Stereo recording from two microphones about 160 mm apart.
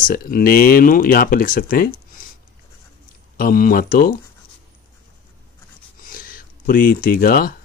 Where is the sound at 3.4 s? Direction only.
65° left (ahead or behind).